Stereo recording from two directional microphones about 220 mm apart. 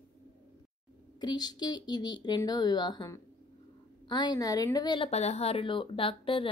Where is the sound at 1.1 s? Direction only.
20° left (ahead or behind).